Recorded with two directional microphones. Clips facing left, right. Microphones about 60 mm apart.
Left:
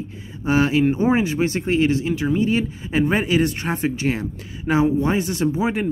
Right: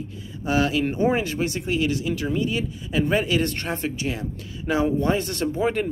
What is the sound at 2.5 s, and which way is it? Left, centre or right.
Speech, left.